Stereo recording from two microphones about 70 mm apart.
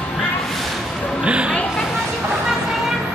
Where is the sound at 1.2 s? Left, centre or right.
Centre.